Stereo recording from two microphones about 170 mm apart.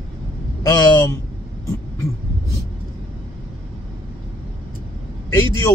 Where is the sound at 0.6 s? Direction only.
25° left (ahead or behind).